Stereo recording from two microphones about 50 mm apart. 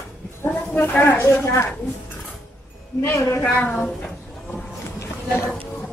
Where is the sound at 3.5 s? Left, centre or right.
Left.